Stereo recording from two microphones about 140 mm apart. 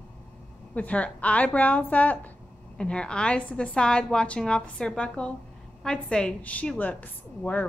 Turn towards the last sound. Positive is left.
turn(degrees=10)  # may be behind; listen again after turning